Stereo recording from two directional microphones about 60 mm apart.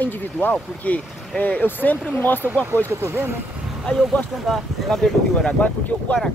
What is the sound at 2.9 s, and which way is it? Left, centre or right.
Speech, right.